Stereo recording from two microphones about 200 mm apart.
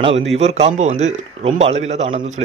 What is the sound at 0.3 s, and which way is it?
Speech, 35° right (ahead or behind).